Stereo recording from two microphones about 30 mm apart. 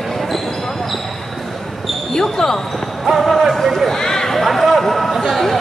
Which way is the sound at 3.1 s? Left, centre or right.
Centre.